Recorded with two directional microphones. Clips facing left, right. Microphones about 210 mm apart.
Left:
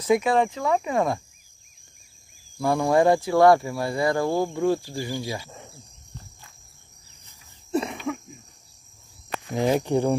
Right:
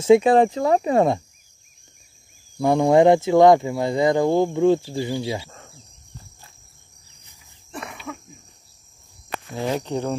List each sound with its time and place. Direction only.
0.0 s speech: 30° right (ahead or behind)
2.5 s speech: 20° right (ahead or behind)
7.7 s a sound: 25° left (ahead or behind)
9.5 s speech: 15° left (ahead or behind)